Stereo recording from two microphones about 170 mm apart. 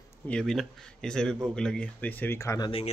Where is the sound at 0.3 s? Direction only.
5° left (ahead or behind); by 2.7 s 20° left (ahead or behind).